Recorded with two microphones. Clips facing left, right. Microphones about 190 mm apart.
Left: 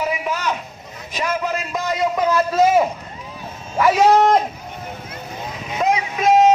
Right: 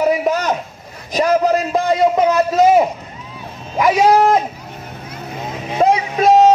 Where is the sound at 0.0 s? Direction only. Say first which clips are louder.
Right 7 dB; 40° right (ahead or behind).